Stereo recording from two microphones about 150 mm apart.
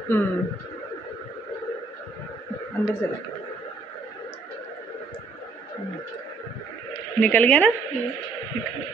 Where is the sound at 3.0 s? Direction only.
15° left (ahead or behind).